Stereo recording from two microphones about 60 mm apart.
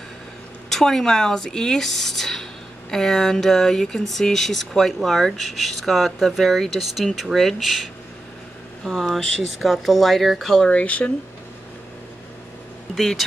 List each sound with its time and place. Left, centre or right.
0.7 s speech: centre
10.7 s speech: left
12.9 s speech: centre